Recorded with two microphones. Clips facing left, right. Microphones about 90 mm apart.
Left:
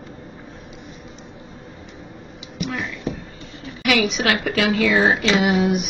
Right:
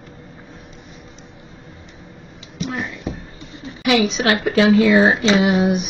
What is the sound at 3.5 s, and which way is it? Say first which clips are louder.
Speech: right 3 dB; 25° right (ahead or behind).